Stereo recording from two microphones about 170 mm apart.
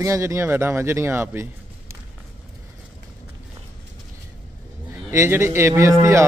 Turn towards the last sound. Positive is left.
turn(degrees=-15)  # may be behind; listen again after turning